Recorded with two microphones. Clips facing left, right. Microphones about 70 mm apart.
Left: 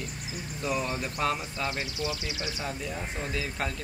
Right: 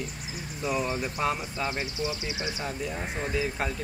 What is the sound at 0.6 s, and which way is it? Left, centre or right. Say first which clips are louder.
Speech: right 2 dB; centre.